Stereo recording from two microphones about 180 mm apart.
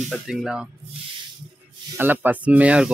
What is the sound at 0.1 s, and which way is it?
Speech, centre (ahead or behind).